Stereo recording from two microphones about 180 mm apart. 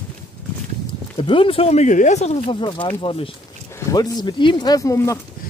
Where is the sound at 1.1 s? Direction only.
30° left (ahead or behind).